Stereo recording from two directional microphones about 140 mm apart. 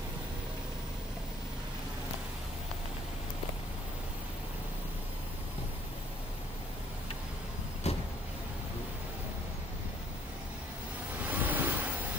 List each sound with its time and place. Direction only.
7.8 s vehicle: 50° left (ahead or behind)
11.2 s waves: 15° right (ahead or behind)